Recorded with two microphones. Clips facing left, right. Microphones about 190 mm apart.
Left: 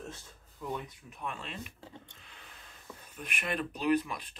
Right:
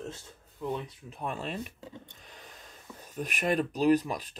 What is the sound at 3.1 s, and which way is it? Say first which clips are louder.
Speech: right 8 dB; 40° right (ahead or behind).